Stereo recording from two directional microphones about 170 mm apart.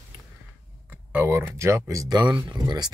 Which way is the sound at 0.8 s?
10° right (ahead or behind).